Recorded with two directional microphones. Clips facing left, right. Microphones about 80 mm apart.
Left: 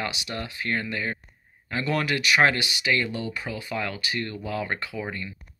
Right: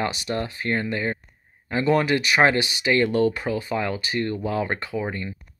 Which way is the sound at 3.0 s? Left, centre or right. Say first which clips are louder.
Right 10 dB; right.